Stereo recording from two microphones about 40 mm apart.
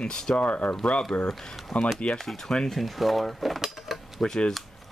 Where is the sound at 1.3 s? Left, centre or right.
Centre.